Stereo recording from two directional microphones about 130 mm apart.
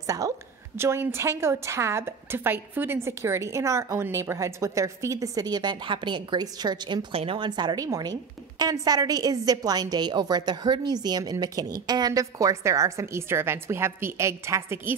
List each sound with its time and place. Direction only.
0.0 s a woman's voice: 25° right (ahead or behind)